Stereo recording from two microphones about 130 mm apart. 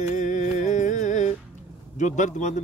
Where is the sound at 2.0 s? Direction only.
65° left (ahead or behind).